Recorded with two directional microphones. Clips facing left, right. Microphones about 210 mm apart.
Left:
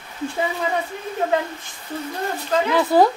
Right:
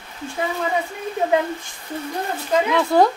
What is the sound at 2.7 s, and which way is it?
Speech, centre (ahead or behind).